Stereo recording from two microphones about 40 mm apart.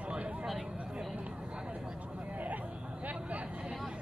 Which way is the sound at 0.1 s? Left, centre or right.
Right.